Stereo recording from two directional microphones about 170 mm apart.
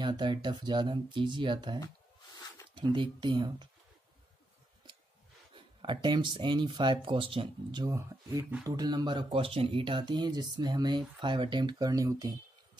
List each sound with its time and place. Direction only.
0.0 s speech: 25° right (ahead or behind)
5.5 s speech: 30° right (ahead or behind)